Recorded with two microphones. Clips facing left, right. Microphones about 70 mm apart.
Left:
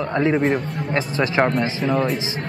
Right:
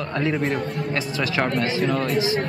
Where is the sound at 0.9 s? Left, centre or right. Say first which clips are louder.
Left 8 dB; left.